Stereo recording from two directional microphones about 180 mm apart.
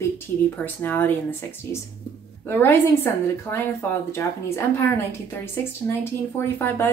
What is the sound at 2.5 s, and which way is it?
A woman's voice, 10° left (ahead or behind).